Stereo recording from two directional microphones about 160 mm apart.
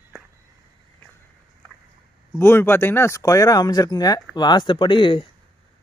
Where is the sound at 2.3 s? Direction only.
15° left (ahead or behind); by 5.2 s 30° left (ahead or behind).